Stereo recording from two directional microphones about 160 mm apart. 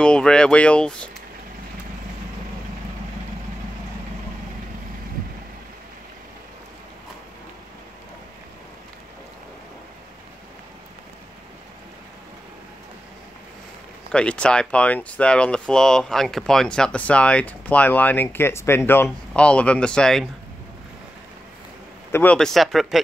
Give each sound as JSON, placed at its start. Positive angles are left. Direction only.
{"t": 0.0, "sound": "speech", "side_deg": 5}
{"t": 14.1, "sound": "speech", "side_deg": 5}
{"t": 22.1, "sound": "speech", "side_deg": 10}